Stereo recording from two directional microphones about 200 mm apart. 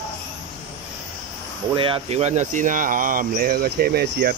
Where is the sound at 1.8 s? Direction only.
30° right (ahead or behind).